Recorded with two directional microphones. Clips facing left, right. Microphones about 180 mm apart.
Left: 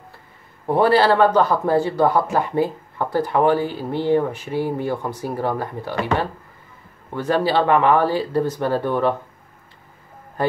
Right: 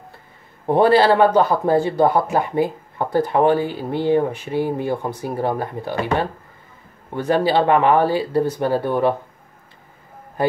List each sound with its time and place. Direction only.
0.7 s speech: 20° right (ahead or behind)
7.1 s speech: 15° right (ahead or behind)